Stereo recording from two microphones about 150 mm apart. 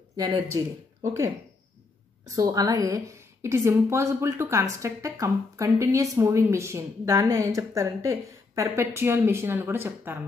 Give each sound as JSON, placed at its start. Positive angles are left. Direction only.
{"t": 0.5, "sound": "a woman's voice", "side_deg": -30}
{"t": 2.3, "sound": "a woman's voice", "side_deg": -25}